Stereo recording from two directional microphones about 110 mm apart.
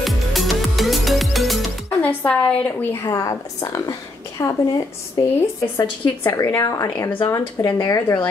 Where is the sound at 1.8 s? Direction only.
10° left (ahead or behind).